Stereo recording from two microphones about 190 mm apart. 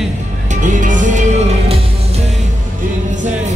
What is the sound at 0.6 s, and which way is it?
Music, 40° right (ahead or behind).